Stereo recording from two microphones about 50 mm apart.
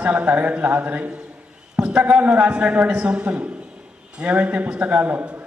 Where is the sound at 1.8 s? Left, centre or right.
Right.